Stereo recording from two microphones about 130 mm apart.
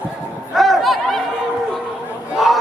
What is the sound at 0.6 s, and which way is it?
Chatter, centre (ahead or behind).